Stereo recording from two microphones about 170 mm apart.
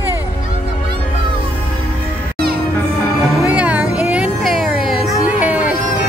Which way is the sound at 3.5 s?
10° right (ahead or behind).